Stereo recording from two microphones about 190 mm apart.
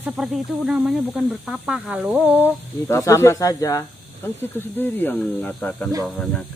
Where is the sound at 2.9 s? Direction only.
15° left (ahead or behind).